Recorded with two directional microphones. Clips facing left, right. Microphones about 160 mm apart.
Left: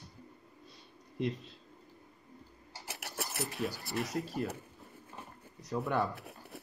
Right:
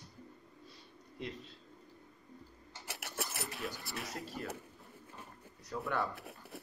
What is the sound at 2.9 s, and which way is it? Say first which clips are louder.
Speech: left 1 dB; centre (ahead or behind).